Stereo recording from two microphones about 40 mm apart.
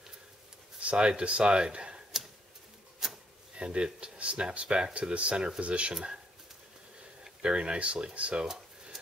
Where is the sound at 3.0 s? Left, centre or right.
Centre.